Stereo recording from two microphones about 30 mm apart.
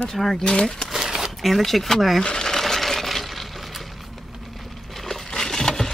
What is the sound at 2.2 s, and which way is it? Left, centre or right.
Speech, left.